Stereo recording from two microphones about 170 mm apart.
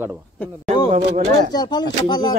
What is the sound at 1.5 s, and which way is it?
Speech, 25° left (ahead or behind).